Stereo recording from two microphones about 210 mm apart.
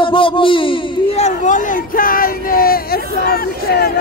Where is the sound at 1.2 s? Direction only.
35° left (ahead or behind).